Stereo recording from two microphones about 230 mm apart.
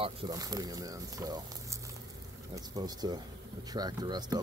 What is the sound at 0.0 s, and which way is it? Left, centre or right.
Speech, centre.